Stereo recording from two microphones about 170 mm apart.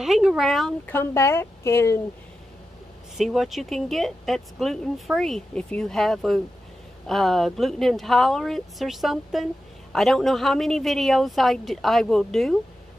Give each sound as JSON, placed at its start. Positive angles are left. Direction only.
{"t": 0.0, "sound": "speech", "side_deg": 0}
{"t": 0.9, "sound": "speech", "side_deg": 15}
{"t": 3.2, "sound": "speech", "side_deg": 0}